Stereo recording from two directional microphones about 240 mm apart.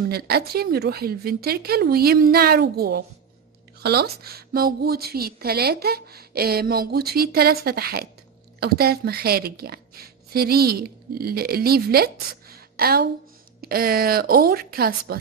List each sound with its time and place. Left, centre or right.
0.1 s a woman's voice: right